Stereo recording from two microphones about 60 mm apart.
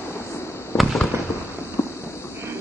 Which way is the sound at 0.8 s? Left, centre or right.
Centre.